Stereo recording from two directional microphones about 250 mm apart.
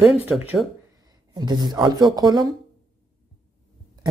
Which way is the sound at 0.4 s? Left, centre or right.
Centre.